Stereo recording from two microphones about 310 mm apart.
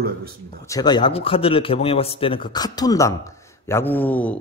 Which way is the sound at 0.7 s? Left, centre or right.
Centre.